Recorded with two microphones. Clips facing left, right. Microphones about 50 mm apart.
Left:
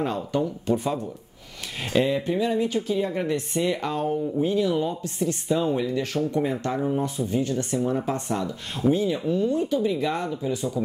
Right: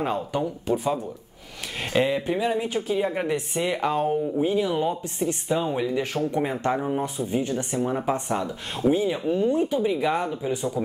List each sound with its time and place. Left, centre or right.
0.0 s speech: centre